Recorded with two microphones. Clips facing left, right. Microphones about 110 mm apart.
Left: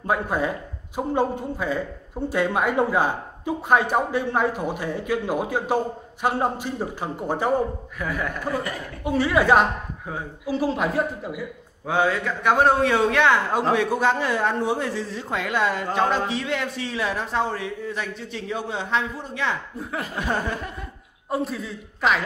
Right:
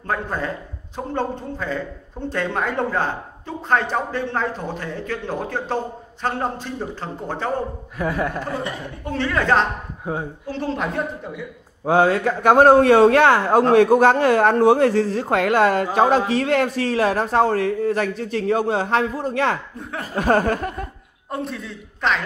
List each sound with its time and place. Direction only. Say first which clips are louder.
0.0 s a man's voice: left 2 dB; 10° left (ahead or behind)
8.0 s a man's voice: right 5 dB; 30° right (ahead or behind)
9.0 s a man's voice: left 2 dB; 10° left (ahead or behind)
11.8 s a man's voice: right 6 dB; 40° right (ahead or behind)
19.8 s speech: left 1 dB; centre (ahead or behind)
20.2 s speech: right 10 dB; 55° right (ahead or behind)
21.3 s speech: left 2 dB; centre (ahead or behind)